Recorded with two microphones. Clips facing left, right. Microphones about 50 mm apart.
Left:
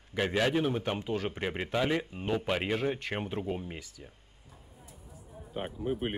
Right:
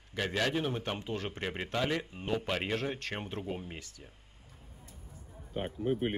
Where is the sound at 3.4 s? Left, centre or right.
Centre.